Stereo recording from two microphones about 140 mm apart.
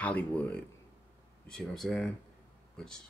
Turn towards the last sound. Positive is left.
turn(degrees=5)  # may be behind; listen again after turning